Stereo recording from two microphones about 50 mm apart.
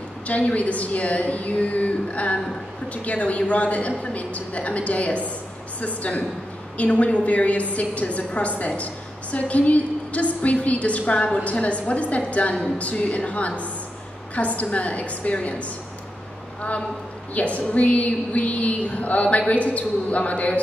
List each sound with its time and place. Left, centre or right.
0.3 s a woman's voice: left
17.3 s a woman's voice: left